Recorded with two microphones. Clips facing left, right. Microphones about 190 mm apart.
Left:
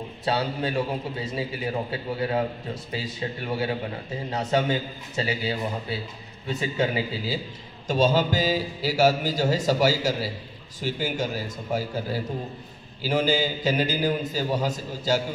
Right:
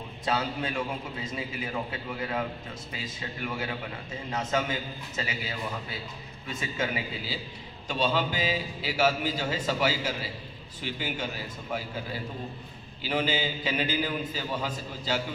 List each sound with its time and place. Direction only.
0.2 s a man's voice: 35° left (ahead or behind)
3.4 s a man's voice: 30° left (ahead or behind)
7.9 s a man's voice: 40° left (ahead or behind)